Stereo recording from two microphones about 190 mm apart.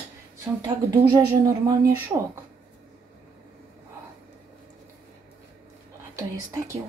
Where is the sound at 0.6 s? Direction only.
20° right (ahead or behind).